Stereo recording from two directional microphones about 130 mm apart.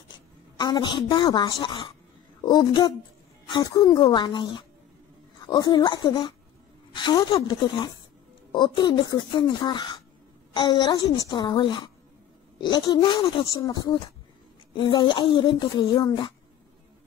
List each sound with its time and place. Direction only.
0.6 s a woman's voice: 30° left (ahead or behind)
14.7 s speech: 35° left (ahead or behind)